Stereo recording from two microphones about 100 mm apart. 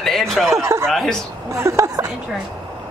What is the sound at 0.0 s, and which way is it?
Speech, 5° left (ahead or behind).